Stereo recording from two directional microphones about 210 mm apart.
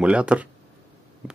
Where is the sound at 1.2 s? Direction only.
5° right (ahead or behind).